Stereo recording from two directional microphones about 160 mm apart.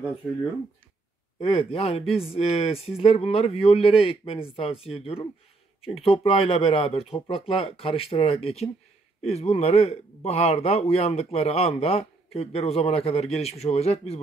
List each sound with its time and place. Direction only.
1.4 s a man's voice: 35° left (ahead or behind)